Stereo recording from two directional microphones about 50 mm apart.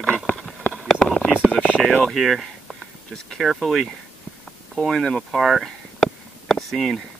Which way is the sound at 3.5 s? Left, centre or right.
Centre.